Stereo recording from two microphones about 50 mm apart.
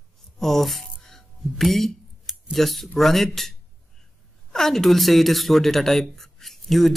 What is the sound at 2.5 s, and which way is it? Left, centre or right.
A woman's voice, centre.